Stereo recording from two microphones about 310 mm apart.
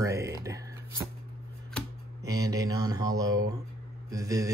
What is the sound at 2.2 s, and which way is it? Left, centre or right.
Speech, centre.